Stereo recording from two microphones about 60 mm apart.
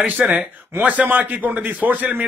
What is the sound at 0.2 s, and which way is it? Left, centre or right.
Speech, centre.